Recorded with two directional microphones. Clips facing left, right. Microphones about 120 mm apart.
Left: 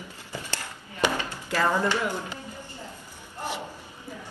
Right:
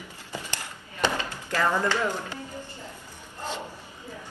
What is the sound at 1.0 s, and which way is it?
Speech, 15° left (ahead or behind).